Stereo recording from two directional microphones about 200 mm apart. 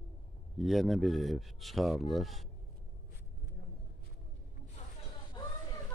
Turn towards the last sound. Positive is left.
turn(degrees=20)  # may be behind; listen again after turning